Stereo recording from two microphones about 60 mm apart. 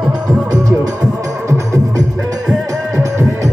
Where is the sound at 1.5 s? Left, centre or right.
Right.